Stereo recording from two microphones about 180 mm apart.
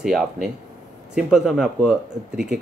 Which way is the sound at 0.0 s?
5° right (ahead or behind).